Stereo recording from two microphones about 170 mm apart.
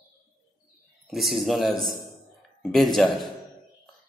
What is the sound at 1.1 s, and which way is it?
Speech, centre (ahead or behind).